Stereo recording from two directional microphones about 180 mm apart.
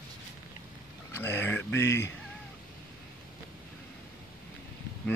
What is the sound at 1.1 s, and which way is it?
Speech, 15° left (ahead or behind).